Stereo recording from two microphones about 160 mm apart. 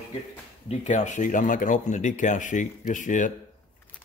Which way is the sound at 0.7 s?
45° left (ahead or behind).